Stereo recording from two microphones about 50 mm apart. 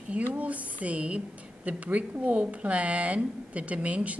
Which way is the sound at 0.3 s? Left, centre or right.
Right.